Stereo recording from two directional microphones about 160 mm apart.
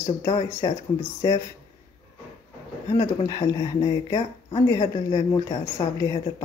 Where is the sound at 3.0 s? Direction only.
20° left (ahead or behind).